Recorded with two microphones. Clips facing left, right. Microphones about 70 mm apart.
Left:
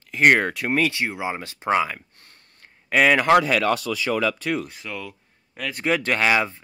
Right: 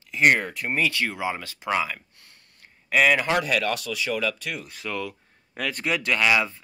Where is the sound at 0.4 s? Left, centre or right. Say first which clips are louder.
Left 5 dB; left.